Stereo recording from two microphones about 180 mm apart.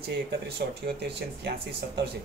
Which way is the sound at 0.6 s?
55° right (ahead or behind).